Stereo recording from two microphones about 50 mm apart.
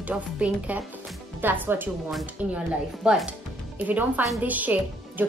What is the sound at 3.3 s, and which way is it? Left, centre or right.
Music, right.